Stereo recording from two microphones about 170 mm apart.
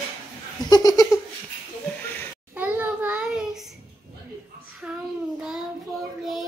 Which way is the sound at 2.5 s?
10° right (ahead or behind).